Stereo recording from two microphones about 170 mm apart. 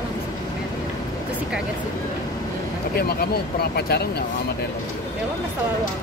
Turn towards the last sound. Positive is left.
turn(degrees=70)  # may be behind; listen again after turning